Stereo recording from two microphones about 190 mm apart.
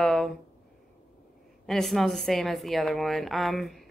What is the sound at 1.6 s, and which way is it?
Speech, centre (ahead or behind).